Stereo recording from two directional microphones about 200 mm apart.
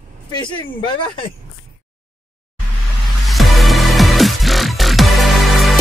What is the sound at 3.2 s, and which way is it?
Music, centre (ahead or behind).